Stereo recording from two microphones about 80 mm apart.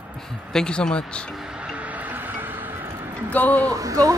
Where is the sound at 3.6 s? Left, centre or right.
Right.